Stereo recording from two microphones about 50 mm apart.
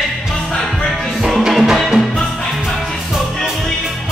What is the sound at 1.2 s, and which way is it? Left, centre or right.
Music, centre.